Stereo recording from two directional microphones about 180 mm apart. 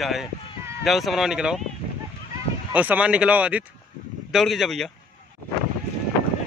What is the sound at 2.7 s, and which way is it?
Speech, 10° right (ahead or behind).